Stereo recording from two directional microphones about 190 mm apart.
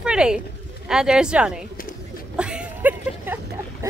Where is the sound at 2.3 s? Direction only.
5° right (ahead or behind).